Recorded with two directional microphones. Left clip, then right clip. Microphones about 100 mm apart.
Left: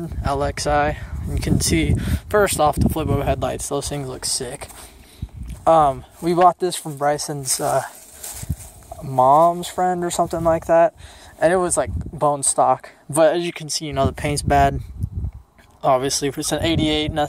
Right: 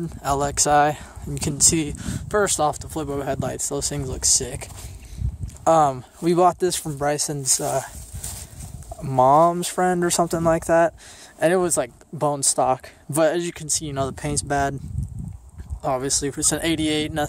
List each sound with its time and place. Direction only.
0.2 s speech: 40° right (ahead or behind)
1.6 s speech: 10° right (ahead or behind)
3.8 s speech: 20° right (ahead or behind)
6.2 s speech: 45° right (ahead or behind)
7.5 s speech: 10° right (ahead or behind)
9.0 s speech: 80° right; by 11.6 s 40° right (ahead or behind)
11.6 s speech: 55° right (ahead or behind)
13.1 s speech: 30° right (ahead or behind)
13.4 s speech: 5° right (ahead or behind); by 14.8 s 10° left (ahead or behind)
15.8 s speech: 10° left (ahead or behind)
16.3 s speech: 20° right (ahead or behind)